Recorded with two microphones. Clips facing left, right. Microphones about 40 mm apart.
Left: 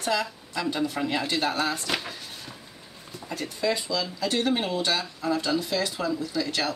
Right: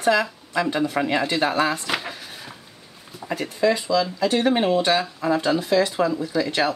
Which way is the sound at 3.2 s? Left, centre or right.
Centre.